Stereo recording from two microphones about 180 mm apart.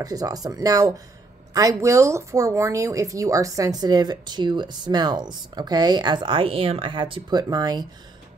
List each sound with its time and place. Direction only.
0.0 s speech: 20° right (ahead or behind)